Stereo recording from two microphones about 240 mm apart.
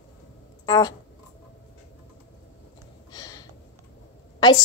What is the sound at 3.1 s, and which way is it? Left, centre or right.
Gasp, centre.